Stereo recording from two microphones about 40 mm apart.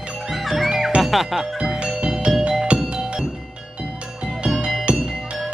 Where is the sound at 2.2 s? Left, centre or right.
Centre.